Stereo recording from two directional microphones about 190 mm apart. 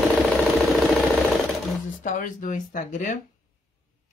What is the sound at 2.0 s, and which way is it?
Speech, 45° left (ahead or behind).